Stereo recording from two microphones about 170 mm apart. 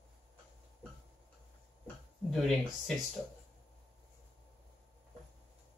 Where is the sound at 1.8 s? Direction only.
Centre (ahead or behind).